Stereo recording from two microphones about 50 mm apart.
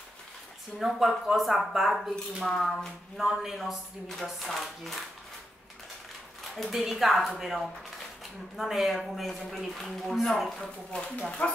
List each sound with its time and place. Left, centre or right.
0.7 s speech: centre
2.4 s a sound: centre
3.3 s speech: centre
6.5 s speech: centre
11.4 s speech: left